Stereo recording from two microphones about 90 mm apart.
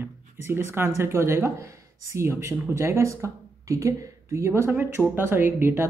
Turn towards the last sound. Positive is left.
turn(degrees=-25)  # may be behind; listen again after turning